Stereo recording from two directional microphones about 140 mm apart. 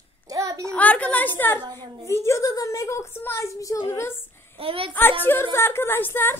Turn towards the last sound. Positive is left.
turn(degrees=15)  # may be behind; listen again after turning